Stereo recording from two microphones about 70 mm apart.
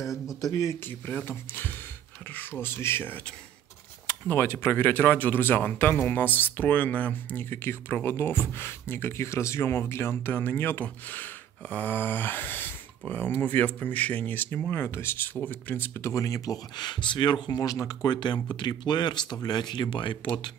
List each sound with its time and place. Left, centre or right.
0.0 s speech: left
0.8 s speech: left
4.3 s speech: left
15.3 s speech: left
15.9 s speech: left
16.7 s speech: left
17.6 s speech: left
18.0 s speech: left